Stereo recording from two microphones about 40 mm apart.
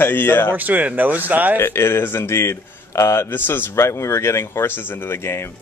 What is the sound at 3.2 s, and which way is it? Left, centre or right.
Speech, left.